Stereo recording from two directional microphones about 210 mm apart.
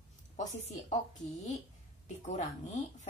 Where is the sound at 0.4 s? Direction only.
35° left (ahead or behind).